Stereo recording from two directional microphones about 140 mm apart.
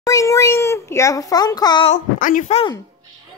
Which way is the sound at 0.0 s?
20° left (ahead or behind).